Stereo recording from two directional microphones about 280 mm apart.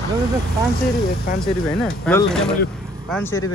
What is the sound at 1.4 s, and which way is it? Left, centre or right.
Speech, centre.